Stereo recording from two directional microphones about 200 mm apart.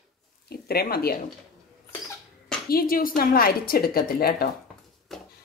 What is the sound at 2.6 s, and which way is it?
A woman's voice, 45° left (ahead or behind).